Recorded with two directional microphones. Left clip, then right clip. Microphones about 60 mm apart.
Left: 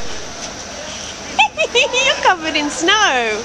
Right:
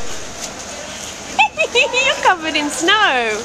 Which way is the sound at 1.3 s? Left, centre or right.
Centre.